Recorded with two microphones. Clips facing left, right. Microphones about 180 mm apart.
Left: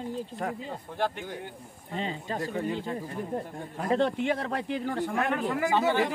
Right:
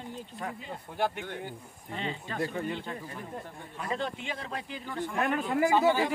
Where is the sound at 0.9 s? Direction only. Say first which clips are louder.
Even; 10° right (ahead or behind).